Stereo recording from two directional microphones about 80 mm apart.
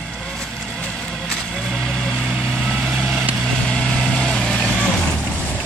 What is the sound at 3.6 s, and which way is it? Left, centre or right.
Vehicle, centre.